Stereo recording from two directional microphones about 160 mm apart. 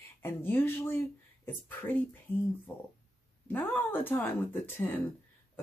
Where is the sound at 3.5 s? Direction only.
10° left (ahead or behind).